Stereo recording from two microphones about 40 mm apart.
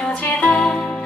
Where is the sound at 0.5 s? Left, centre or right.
Left.